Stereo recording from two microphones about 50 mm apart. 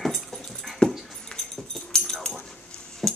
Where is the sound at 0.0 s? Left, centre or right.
Centre.